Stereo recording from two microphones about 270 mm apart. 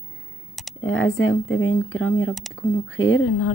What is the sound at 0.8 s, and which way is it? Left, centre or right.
Speech, left.